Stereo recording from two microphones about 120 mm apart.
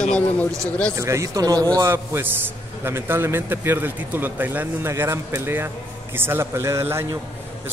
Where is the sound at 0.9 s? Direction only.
25° right (ahead or behind).